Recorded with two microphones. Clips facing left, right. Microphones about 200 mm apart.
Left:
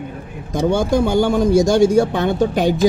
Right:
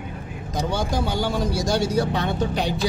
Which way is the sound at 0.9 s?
50° left (ahead or behind).